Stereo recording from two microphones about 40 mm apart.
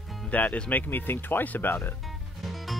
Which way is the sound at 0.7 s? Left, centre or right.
Left.